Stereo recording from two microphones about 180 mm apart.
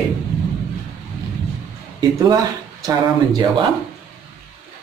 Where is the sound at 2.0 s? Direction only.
20° right (ahead or behind).